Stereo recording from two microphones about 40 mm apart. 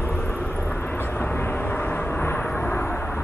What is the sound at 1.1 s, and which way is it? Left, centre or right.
Vehicle, left.